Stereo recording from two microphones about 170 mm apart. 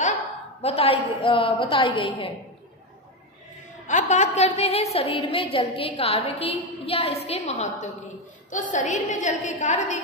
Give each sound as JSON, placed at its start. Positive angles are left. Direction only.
{"t": 0.6, "sound": "a woman's voice", "side_deg": 35}
{"t": 3.8, "sound": "a woman's voice", "side_deg": 45}